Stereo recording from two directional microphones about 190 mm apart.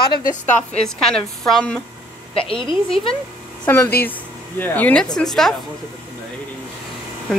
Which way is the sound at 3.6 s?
10° left (ahead or behind).